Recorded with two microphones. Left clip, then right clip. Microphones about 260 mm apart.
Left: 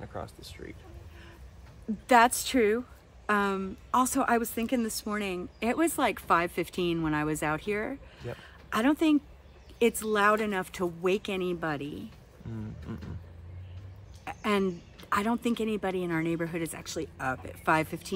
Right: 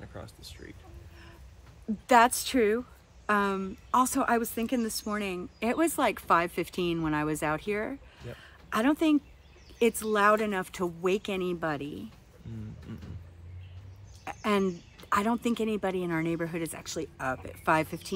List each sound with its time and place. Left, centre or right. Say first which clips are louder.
0.0 s speech: left 5 dB; left
2.0 s speech: even; centre
12.9 s speech: left 4 dB; left
14.2 s speech: even; centre